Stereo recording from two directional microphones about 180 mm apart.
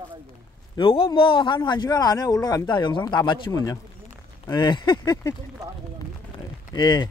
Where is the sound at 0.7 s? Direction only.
30° left (ahead or behind).